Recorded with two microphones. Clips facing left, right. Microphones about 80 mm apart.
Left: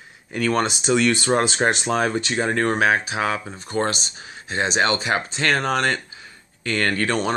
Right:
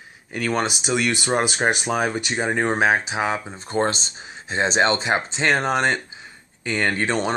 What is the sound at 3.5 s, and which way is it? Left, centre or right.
Speech, right.